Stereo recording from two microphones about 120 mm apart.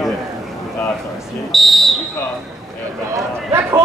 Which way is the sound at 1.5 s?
Centre (ahead or behind).